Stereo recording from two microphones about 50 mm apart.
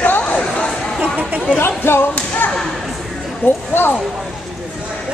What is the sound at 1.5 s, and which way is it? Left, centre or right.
Speech, left.